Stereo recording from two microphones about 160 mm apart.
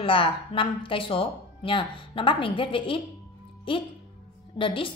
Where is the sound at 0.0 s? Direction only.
35° left (ahead or behind).